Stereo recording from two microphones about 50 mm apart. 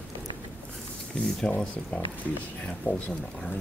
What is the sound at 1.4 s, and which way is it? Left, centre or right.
Speech, centre.